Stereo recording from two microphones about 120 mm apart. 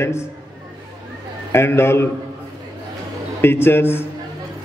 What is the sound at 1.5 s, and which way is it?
Speech, 20° left (ahead or behind).